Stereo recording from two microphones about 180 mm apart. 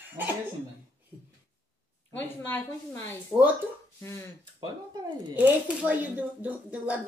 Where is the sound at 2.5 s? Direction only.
10° left (ahead or behind).